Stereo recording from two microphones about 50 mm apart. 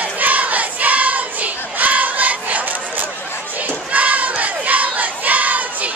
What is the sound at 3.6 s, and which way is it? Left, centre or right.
Battle cry, right.